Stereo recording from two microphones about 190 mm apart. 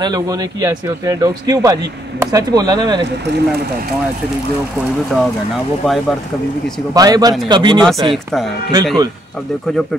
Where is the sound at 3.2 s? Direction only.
60° right (ahead or behind).